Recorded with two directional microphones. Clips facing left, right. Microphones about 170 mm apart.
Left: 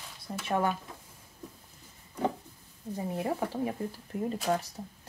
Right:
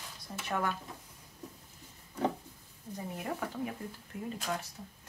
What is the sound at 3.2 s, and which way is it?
Speech, 30° left (ahead or behind).